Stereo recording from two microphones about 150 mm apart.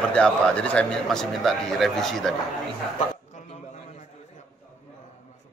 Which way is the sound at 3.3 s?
45° left (ahead or behind).